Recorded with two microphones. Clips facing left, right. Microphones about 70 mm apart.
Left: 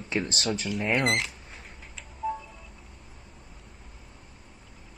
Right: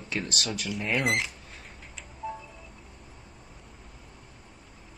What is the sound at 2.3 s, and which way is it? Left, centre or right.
Tick, centre.